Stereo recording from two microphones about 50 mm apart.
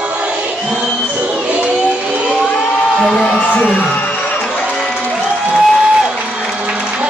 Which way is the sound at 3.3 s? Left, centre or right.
Left.